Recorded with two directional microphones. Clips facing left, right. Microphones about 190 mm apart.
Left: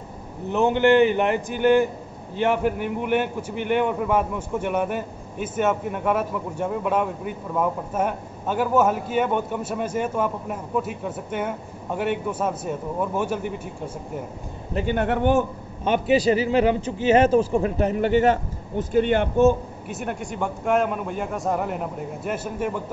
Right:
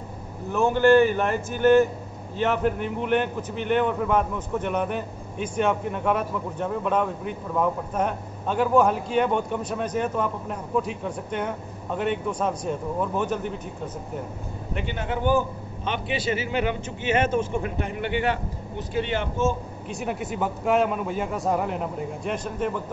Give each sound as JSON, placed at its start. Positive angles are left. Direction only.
{"t": 0.5, "sound": "a man's voice", "side_deg": 20}
{"t": 14.7, "sound": "speech", "side_deg": 35}
{"t": 15.0, "sound": "a man's voice", "side_deg": 65}
{"t": 15.8, "sound": "a man's voice", "side_deg": 45}
{"t": 19.9, "sound": "speech", "side_deg": 0}